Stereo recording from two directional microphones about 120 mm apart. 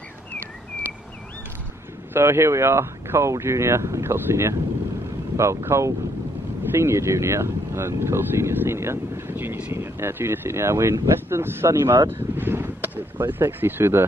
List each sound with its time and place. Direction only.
2.1 s speech: 20° right (ahead or behind)